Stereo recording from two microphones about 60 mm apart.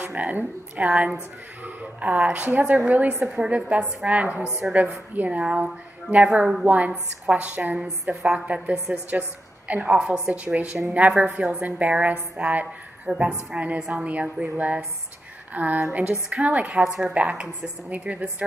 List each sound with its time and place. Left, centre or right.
0.0 s a woman's voice: right
3.3 s a woman's voice: centre
4.6 s a woman's voice: right
9.8 s a woman's voice: centre
11.2 s a woman's voice: centre
11.6 s a woman's voice: right
16.8 s a woman's voice: centre
17.1 s a woman's voice: right